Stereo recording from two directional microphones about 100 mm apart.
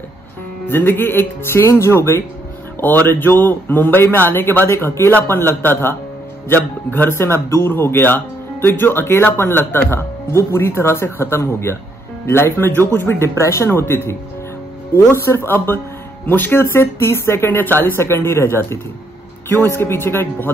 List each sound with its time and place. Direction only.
0.7 s a man's voice: 20° left (ahead or behind)